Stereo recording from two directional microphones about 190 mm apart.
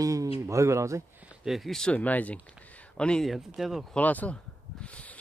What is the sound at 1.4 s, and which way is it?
Speech, centre (ahead or behind).